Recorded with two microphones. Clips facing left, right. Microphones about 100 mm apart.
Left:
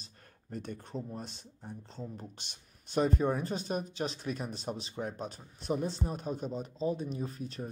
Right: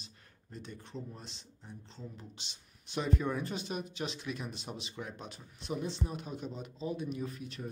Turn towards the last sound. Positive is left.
turn(degrees=35)  # may be behind; listen again after turning